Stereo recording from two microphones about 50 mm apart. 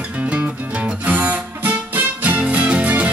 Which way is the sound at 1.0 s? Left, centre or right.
Right.